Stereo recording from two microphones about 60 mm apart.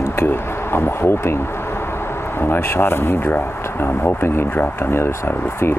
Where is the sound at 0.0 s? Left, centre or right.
Left.